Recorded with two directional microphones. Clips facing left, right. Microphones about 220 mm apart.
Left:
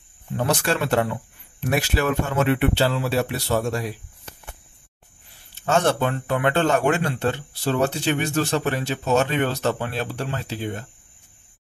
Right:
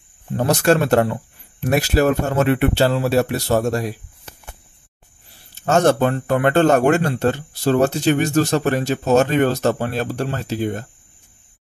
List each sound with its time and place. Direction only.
0.3 s a man's voice: 40° right (ahead or behind)
5.5 s a man's voice: 45° right (ahead or behind)